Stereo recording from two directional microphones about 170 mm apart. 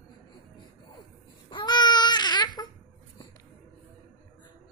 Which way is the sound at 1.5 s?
25° left (ahead or behind).